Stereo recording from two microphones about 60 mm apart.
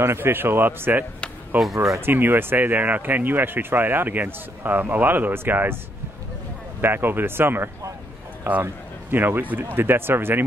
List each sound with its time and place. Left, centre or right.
0.0 s speech: right
6.8 s speech: right